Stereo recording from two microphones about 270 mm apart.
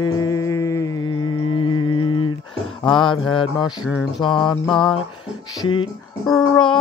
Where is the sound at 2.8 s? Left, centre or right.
Centre.